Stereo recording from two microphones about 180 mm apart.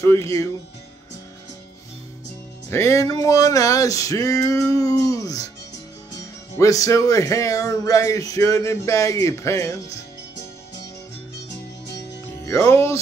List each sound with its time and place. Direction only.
0.0 s speech: 15° left (ahead or behind)
2.7 s a sound: 15° left (ahead or behind)
6.6 s speech: 20° left (ahead or behind)
11.4 s music: 65° left (ahead or behind)
12.4 s speech: 15° left (ahead or behind)